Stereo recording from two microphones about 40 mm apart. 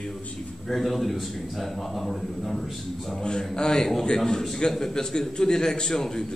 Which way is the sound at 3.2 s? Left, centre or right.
Centre.